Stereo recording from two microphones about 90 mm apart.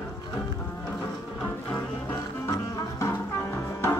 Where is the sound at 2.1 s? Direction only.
35° left (ahead or behind).